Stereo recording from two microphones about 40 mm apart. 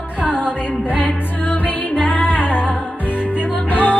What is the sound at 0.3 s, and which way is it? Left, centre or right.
Music, centre.